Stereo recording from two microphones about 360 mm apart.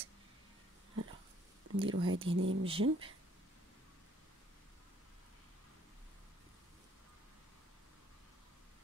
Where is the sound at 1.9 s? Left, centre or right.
Right.